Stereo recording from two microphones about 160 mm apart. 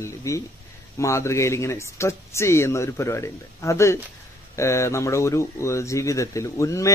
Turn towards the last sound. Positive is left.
turn(degrees=20)  # may be behind; listen again after turning